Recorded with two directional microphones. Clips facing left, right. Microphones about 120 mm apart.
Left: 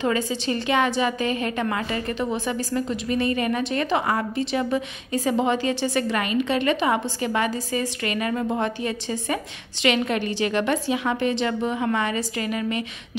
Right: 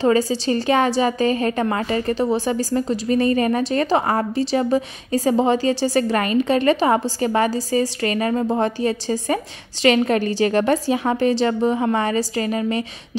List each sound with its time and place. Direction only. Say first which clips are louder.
0.0 s a woman's voice: right 6 dB; 35° right (ahead or behind)